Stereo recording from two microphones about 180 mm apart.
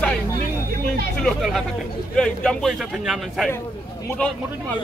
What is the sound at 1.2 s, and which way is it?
A man's voice, centre (ahead or behind).